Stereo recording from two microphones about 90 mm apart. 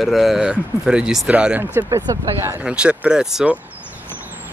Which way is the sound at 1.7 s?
35° right (ahead or behind).